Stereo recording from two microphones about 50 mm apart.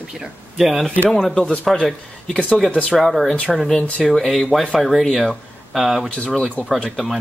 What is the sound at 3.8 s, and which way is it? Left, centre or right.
Speech, left.